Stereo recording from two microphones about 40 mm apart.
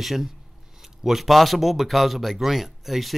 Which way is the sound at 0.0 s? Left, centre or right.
Centre.